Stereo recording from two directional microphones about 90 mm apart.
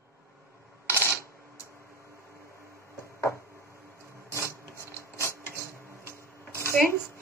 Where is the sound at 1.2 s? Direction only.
35° left (ahead or behind).